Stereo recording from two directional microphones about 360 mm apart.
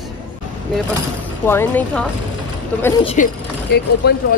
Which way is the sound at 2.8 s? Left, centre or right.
Centre.